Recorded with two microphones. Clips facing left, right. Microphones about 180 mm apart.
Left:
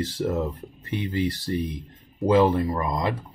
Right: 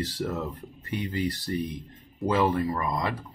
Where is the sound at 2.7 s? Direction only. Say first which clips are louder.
Left 2 dB; 20° left (ahead or behind).